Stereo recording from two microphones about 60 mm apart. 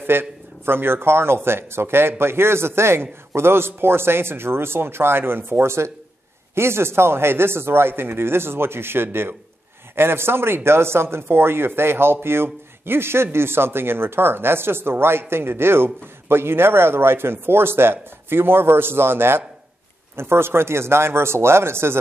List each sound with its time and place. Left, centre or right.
0.0 s speech: right